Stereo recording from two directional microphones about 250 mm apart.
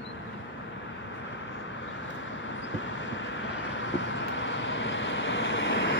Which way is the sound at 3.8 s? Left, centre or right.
Left.